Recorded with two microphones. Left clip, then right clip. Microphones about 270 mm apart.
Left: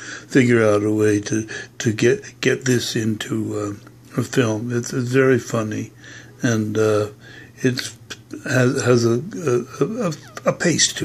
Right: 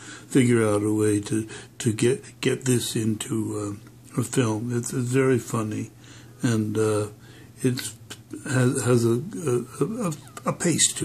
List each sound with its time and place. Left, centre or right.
0.0 s speech: centre